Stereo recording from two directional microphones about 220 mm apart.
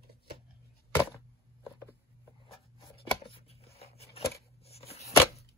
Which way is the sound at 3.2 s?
25° left (ahead or behind).